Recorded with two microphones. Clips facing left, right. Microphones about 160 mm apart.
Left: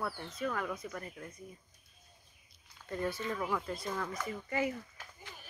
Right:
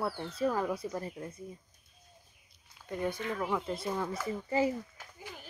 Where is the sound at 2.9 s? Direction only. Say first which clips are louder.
Right 2 dB; 15° right (ahead or behind).